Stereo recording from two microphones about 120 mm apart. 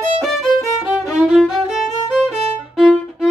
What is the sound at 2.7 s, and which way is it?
Violin, centre (ahead or behind).